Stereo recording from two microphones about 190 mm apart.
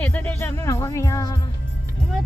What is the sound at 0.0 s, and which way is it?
Music, 10° left (ahead or behind).